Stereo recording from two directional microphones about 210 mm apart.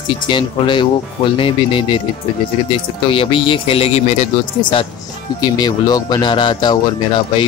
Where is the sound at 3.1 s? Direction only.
25° left (ahead or behind).